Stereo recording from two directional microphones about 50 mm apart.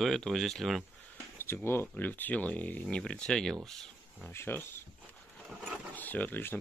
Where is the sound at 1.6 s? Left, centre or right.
Left.